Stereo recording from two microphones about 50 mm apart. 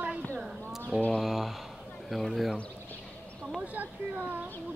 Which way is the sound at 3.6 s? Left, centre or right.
Right.